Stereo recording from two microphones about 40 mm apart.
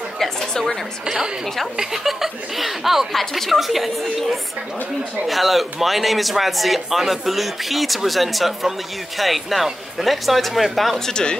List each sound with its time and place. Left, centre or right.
0.2 s a sound: centre
1.0 s speech: centre
11.1 s speech: centre